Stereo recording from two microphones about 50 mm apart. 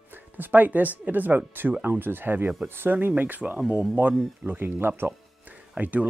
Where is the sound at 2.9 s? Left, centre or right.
Right.